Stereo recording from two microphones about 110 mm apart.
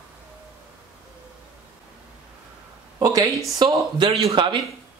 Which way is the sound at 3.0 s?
35° right (ahead or behind).